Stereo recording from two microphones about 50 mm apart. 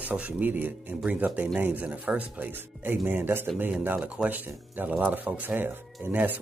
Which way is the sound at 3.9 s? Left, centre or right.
Right.